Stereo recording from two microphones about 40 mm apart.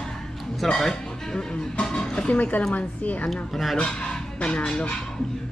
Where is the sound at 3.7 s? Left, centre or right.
Centre.